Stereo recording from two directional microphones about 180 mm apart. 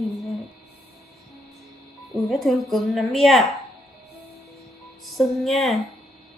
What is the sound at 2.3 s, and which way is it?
A woman's voice, centre (ahead or behind).